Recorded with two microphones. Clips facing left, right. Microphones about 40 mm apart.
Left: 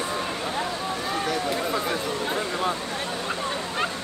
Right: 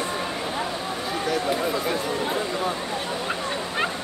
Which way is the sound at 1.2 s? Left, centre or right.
Centre.